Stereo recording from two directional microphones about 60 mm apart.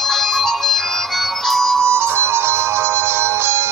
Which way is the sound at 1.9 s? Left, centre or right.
Right.